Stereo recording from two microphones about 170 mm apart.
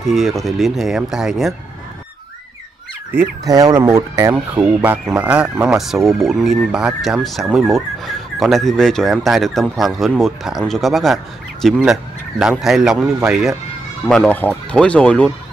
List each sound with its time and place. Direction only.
0.0 s speech: centre (ahead or behind)
3.1 s speech: 15° right (ahead or behind)
4.6 s speech: 5° right (ahead or behind)